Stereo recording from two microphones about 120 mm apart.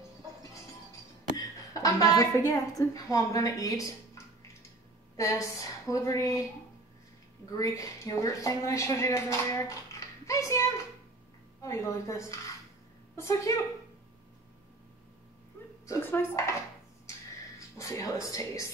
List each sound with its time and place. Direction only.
1.3 s a woman's voice: 30° left (ahead or behind)
5.1 s speech: 25° left (ahead or behind)
7.5 s speech: 25° left (ahead or behind)
11.6 s a woman's voice: 25° left (ahead or behind)
15.9 s speech: 20° left (ahead or behind)
17.6 s speech: 25° left (ahead or behind)